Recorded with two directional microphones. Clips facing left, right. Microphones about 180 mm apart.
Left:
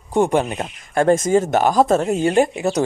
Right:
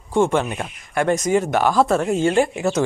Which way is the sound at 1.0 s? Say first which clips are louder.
Left 3 dB; 45° left (ahead or behind).